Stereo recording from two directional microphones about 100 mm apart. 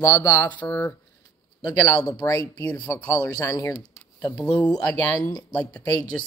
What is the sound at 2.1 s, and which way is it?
Speech, 30° left (ahead or behind).